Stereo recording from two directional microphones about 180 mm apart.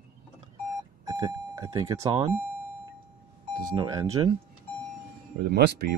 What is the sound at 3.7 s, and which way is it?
Speech, 20° right (ahead or behind).